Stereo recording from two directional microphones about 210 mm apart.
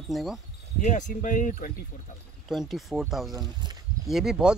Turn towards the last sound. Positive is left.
turn(degrees=-5)  # may be behind; listen again after turning